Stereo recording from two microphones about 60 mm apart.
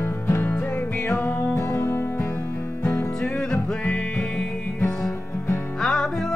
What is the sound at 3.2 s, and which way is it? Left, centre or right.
Music, centre.